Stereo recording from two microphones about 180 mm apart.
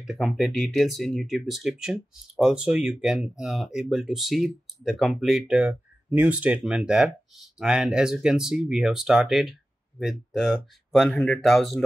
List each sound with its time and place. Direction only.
0.0 s speech: centre (ahead or behind)